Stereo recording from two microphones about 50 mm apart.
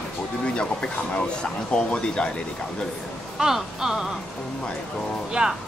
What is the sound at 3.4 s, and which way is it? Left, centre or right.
Speech, centre.